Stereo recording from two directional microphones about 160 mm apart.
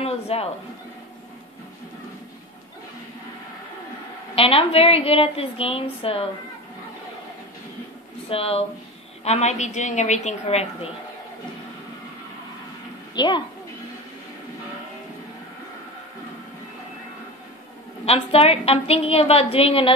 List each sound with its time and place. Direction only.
0.3 s a woman's voice: 40° left (ahead or behind)
4.4 s a woman's voice: 35° left (ahead or behind)
8.3 s a woman's voice: 35° left (ahead or behind)
13.1 s speech: 30° left (ahead or behind)
18.0 s a woman's voice: 40° left (ahead or behind)